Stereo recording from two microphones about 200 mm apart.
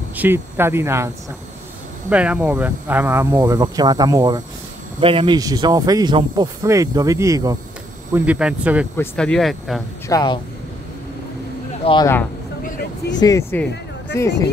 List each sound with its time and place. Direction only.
0.1 s speech: 10° right (ahead or behind)
8.1 s speech: 5° right (ahead or behind)
8.9 s speech: 5° left (ahead or behind)
10.0 s speech: 20° left (ahead or behind)
11.8 s speech: 25° left (ahead or behind)
13.2 s speech: 15° left (ahead or behind)